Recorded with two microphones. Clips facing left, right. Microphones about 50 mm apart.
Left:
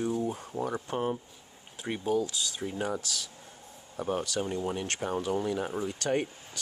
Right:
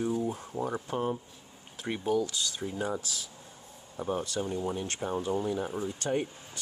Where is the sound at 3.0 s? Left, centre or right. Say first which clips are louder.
Left 2 dB; left.